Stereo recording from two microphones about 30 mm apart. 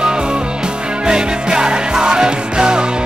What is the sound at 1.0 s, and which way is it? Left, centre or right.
Music, right.